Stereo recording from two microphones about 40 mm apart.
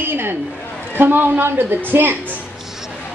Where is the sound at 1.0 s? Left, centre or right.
Right.